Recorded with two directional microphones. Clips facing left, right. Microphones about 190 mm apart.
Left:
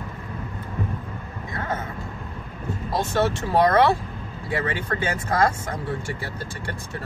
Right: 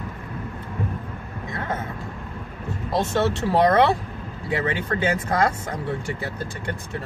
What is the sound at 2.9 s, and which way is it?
Speech, 20° right (ahead or behind).